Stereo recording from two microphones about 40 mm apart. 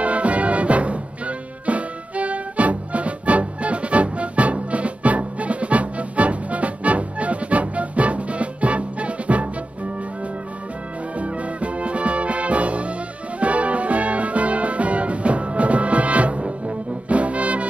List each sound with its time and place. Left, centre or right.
0.0 s music: right
11.1 s music: right